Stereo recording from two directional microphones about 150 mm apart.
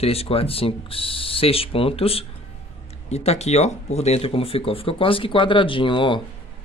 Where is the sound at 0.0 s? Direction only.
40° left (ahead or behind).